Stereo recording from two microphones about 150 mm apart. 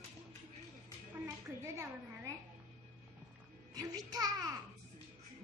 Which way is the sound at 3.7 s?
25° right (ahead or behind).